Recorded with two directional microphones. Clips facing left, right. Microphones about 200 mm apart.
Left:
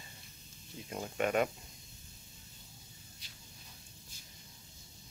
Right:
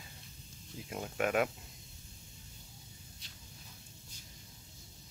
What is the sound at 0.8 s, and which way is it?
Speech, 5° right (ahead or behind).